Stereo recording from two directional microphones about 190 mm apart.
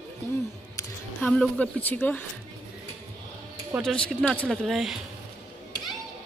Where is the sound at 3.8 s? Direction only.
5° left (ahead or behind).